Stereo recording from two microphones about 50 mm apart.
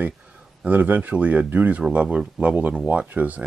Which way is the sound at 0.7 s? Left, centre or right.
Right.